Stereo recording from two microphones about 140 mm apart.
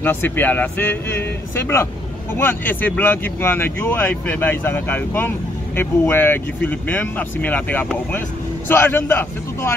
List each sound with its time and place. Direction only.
0.0 s speech: 15° left (ahead or behind)